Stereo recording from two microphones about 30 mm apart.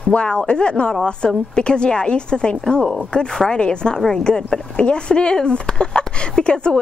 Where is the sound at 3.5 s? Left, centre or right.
Left.